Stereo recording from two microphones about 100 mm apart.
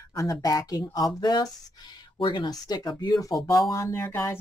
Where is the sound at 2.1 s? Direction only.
55° left (ahead or behind).